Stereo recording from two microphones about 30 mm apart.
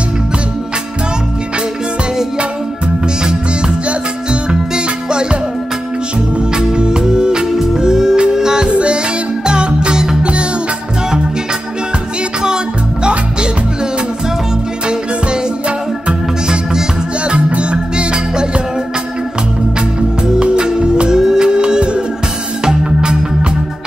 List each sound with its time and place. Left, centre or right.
4.3 s music: right
6.5 s music: right
8.6 s music: right
13.0 s music: right
17.5 s music: right
20.3 s music: right
21.2 s music: centre
21.5 s music: right